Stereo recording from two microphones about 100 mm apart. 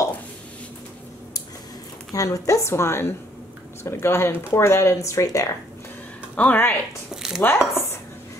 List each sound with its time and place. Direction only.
2.1 s speech: 35° left (ahead or behind)
6.3 s a woman's voice: 15° left (ahead or behind)
7.1 s a sound: 5° right (ahead or behind)
7.4 s chopping: 25° left (ahead or behind)